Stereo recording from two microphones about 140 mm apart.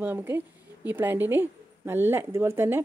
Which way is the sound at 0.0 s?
15° right (ahead or behind).